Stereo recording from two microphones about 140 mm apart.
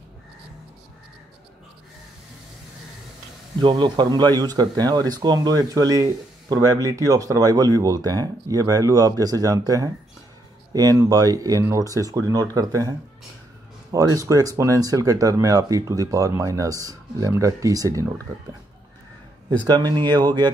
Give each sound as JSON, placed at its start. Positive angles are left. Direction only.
{"t": 3.6, "sound": "speech", "side_deg": -35}
{"t": 13.9, "sound": "speech", "side_deg": -25}
{"t": 19.6, "sound": "speech", "side_deg": -30}